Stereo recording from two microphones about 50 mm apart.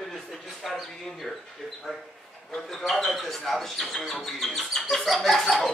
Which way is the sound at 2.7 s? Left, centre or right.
Centre.